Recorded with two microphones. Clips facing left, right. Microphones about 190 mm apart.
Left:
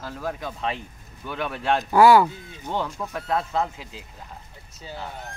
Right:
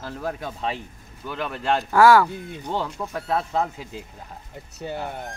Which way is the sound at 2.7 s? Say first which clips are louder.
Even; 10° right (ahead or behind).